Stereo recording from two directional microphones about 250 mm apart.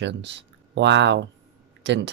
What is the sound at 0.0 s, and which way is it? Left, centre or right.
Speech, right.